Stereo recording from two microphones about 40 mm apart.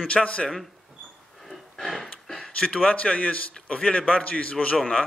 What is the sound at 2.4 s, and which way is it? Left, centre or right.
A man's voice, left.